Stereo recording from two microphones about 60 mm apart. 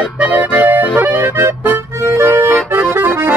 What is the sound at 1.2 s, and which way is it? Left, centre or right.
Music, right.